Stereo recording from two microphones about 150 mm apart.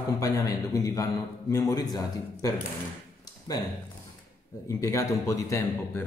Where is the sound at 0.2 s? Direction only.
20° left (ahead or behind).